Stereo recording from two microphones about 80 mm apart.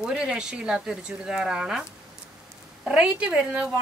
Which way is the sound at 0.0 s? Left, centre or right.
Centre.